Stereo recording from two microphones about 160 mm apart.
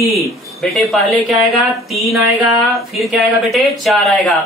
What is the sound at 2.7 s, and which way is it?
Speech, centre (ahead or behind).